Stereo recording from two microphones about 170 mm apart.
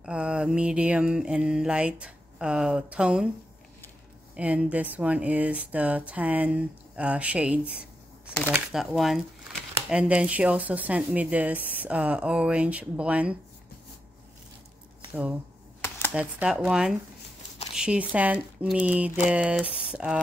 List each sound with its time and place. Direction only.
0.0 s mantra: 5° right (ahead or behind)
4.4 s speech: 5° right (ahead or behind)
8.5 s mantra: centre (ahead or behind)
9.8 s speech: 5° right (ahead or behind)
16.1 s mantra: 5° right (ahead or behind)
17.7 s speech: 5° right (ahead or behind)
19.2 s mantra: 5° right (ahead or behind)